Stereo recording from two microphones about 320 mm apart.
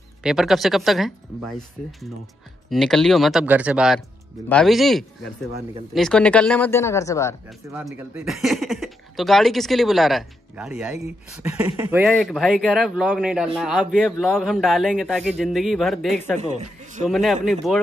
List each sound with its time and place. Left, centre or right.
0.2 s speech: centre
7.7 s speech: centre
16.3 s speech: right
17.1 s speech: centre